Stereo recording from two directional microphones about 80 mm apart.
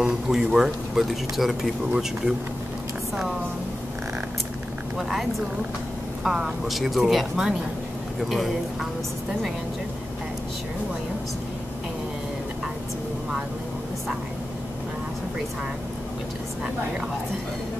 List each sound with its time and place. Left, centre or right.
0.0 s speech: centre
4.9 s speech: centre
6.7 s speech: centre